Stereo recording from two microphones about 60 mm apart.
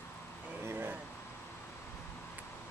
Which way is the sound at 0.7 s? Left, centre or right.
Right.